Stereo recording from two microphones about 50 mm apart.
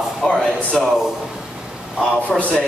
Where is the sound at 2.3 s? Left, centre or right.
Left.